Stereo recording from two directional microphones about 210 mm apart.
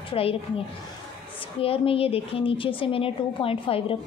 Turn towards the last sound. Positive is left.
turn(degrees=25)  # may be behind; listen again after turning